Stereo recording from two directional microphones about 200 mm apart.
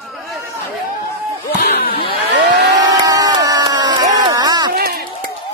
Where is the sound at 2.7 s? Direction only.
15° right (ahead or behind).